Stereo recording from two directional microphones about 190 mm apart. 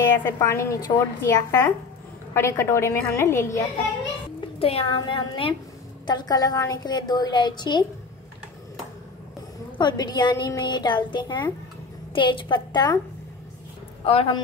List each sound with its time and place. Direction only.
0.2 s a woman's voice: 15° left (ahead or behind)
4.6 s a woman's voice: 30° left (ahead or behind)
9.8 s a woman's voice: 20° left (ahead or behind)
14.0 s a woman's voice: 30° left (ahead or behind)